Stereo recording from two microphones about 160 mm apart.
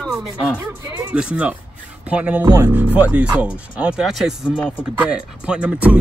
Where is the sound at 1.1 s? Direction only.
5° right (ahead or behind).